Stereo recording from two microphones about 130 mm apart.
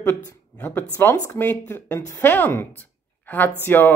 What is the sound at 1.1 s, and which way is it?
Speech, 25° left (ahead or behind).